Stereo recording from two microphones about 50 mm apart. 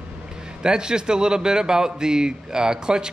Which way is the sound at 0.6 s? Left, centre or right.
Centre.